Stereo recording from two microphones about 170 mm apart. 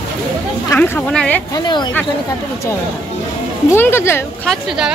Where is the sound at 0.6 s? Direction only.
15° left (ahead or behind).